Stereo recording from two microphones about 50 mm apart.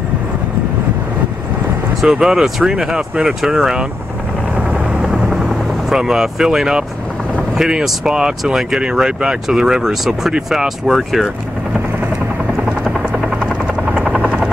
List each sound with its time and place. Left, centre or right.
2.0 s speech: centre
5.0 s helicopter: centre
7.5 s speech: centre
10.9 s speech: centre
13.9 s helicopter: right